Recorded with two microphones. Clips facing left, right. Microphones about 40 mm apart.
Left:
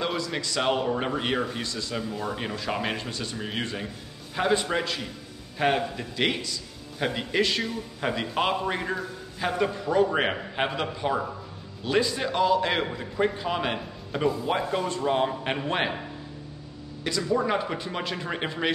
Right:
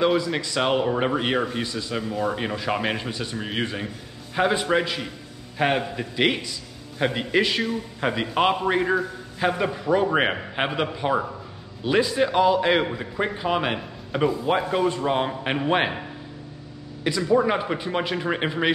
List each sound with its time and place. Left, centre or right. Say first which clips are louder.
0.0 s a man's voice: right 7 dB; centre
17.0 s a man's voice: right 5 dB; centre